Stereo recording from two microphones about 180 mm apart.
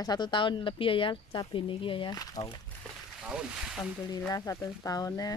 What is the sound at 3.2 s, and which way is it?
Speech, 5° right (ahead or behind).